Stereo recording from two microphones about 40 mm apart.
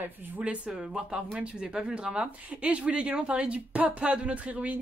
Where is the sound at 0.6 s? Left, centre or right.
Centre.